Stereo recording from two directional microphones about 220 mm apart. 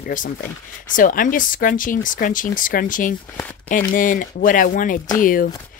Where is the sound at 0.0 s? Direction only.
35° left (ahead or behind).